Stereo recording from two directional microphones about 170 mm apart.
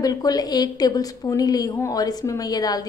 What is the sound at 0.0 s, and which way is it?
A woman's voice, 20° left (ahead or behind).